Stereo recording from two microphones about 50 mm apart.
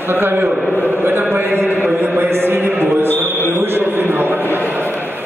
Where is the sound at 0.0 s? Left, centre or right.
Right.